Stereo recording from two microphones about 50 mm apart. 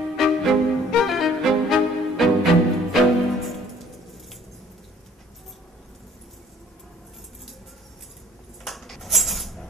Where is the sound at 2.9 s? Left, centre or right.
Centre.